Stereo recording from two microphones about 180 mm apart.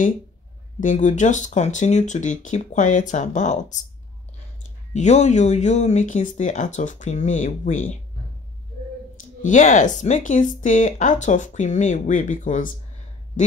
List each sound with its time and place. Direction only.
0.7 s speech: 45° left (ahead or behind)
4.9 s speech: 40° left (ahead or behind)
9.4 s speech: 45° left (ahead or behind)